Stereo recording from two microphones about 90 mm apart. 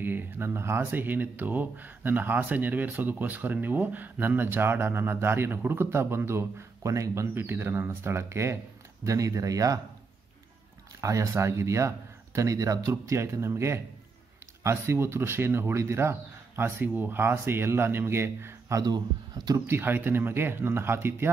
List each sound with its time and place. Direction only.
0.0 s speech: 20° right (ahead or behind)
7.3 s speech: 25° right (ahead or behind)
11.0 s speech: 35° right (ahead or behind)
18.8 s speech: 45° right (ahead or behind)
19.6 s speech: 25° right (ahead or behind)